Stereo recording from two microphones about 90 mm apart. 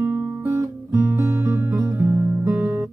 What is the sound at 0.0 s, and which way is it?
Guitar, 25° right (ahead or behind).